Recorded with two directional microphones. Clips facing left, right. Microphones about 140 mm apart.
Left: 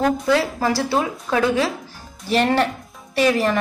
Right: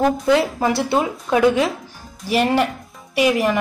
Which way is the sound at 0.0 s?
20° right (ahead or behind).